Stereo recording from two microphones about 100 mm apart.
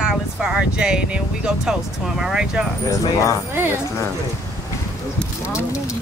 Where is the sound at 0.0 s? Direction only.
5° right (ahead or behind).